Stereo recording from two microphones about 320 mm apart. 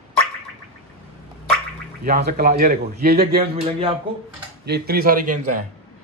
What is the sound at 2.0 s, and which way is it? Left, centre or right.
A man's voice, right.